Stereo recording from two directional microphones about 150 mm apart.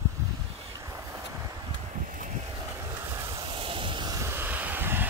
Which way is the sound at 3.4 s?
35° right (ahead or behind).